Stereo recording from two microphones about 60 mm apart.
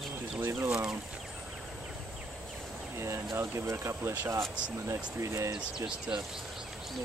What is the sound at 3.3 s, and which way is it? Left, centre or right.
Speech, right.